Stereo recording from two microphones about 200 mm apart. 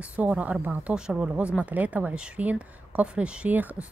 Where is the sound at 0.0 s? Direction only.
5° right (ahead or behind).